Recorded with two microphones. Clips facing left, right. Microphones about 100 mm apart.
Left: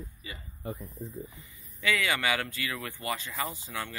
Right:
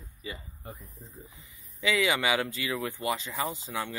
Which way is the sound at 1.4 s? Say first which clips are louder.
Right 4 dB; 15° right (ahead or behind).